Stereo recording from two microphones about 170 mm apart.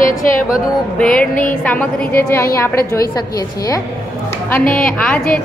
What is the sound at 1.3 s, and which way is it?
Speech, 50° left (ahead or behind).